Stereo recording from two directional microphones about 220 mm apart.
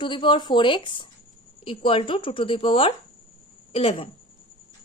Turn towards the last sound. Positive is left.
turn(degrees=25)  # may be behind; listen again after turning